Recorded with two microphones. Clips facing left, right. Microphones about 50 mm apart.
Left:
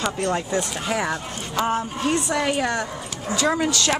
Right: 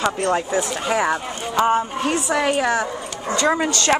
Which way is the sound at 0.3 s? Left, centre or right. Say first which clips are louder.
Right 3 dB; centre.